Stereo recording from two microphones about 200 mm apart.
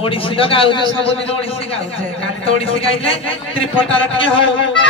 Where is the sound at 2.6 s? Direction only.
30° left (ahead or behind).